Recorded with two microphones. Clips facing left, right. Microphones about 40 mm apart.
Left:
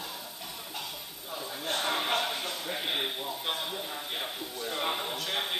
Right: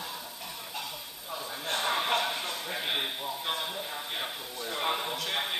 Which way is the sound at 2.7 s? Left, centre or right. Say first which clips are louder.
Even; centre.